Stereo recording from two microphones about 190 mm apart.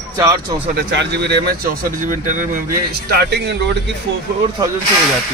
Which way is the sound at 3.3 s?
65° right (ahead or behind).